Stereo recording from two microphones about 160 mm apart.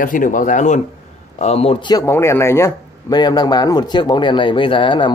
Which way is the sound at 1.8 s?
20° left (ahead or behind).